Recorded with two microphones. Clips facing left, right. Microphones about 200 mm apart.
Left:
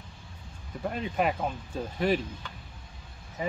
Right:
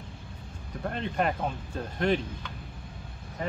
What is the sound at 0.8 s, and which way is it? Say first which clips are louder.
Speech: left 1 dB; 5° left (ahead or behind).